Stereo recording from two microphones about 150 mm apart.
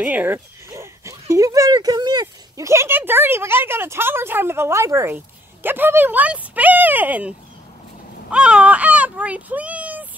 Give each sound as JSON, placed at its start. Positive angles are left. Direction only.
{"t": 0.0, "sound": "speech", "side_deg": -10}